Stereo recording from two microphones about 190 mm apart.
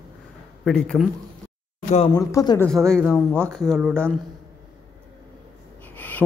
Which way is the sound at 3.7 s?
Centre (ahead or behind).